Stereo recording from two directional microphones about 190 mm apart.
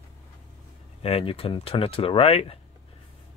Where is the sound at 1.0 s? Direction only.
30° left (ahead or behind).